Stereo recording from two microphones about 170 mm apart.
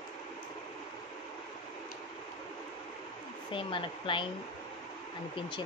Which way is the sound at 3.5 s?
30° left (ahead or behind).